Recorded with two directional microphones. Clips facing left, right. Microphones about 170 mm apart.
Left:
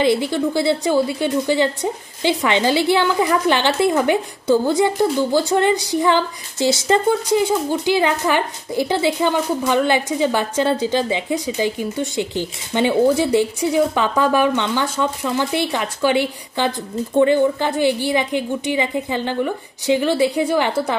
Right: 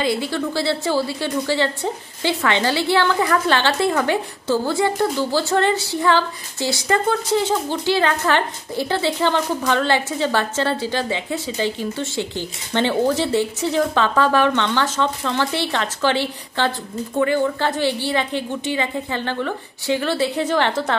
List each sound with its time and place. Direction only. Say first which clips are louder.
0.0 s a woman's voice: left 4 dB; 20° left (ahead or behind)